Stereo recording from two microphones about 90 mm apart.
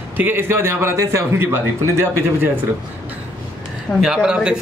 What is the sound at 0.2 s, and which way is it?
Speech, 25° right (ahead or behind).